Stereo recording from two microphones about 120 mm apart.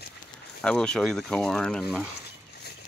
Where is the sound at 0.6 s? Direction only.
5° left (ahead or behind).